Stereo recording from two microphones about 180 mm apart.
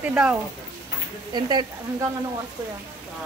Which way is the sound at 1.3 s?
25° right (ahead or behind).